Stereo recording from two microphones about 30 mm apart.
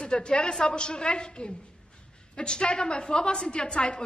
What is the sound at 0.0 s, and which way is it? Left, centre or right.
A woman's voice, left.